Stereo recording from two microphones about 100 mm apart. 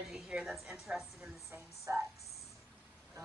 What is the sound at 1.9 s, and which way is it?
Music, 30° right (ahead or behind).